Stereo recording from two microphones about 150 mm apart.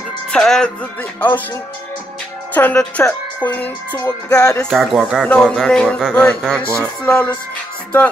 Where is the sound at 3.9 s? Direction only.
25° left (ahead or behind).